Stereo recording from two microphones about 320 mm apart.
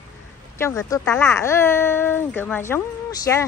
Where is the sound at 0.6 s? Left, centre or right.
Centre.